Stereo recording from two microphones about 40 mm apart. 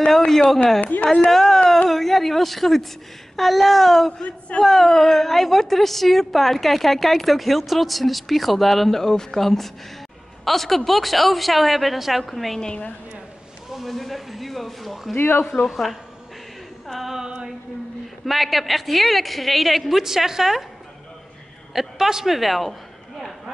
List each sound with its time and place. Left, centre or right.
0.7 s a woman's voice: left
1.3 s a woman's voice: centre
13.7 s a sound: centre
15.1 s speech: left
15.6 s a woman's voice: centre
16.8 s a sound: centre
17.1 s a sound: centre
18.2 s a woman's voice: centre
20.0 s a woman's voice: centre
21.7 s a woman's voice: centre